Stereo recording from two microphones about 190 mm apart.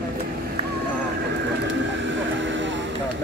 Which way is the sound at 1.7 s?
80° right.